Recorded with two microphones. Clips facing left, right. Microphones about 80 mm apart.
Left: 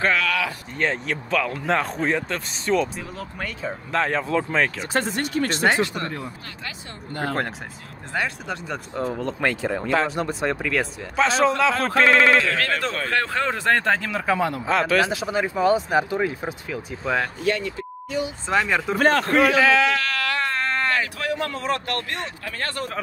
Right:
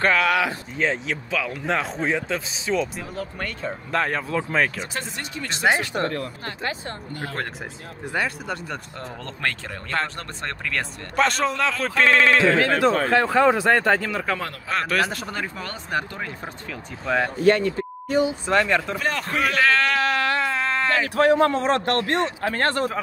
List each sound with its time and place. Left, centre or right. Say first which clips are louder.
0.7 s speech: left 1 dB; centre
4.9 s speech: left 8 dB; left
6.0 s speech: right 4 dB; centre
8.1 s speech: even; centre
12.5 s speech: right 6 dB; centre
13.1 s speech: right 4 dB; centre
14.8 s speech: left 1 dB; centre
17.4 s speech: right 6 dB; right
18.5 s speech: left 2 dB; centre
18.9 s speech: left 7 dB; left
19.5 s speech: left 2 dB; centre
20.0 s a sound: right 4 dB; right
20.4 s a sound: right 1 dB; centre
21.2 s a man's voice: right 9 dB; right